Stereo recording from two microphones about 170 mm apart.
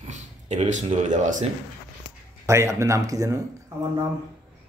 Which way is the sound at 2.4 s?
15° right (ahead or behind).